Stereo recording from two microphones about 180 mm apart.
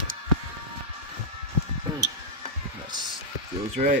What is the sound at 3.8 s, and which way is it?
Speech, 40° right (ahead or behind).